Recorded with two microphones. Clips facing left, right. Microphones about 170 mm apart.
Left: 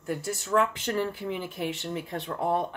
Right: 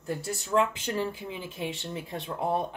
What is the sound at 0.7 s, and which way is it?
Speech, 15° right (ahead or behind).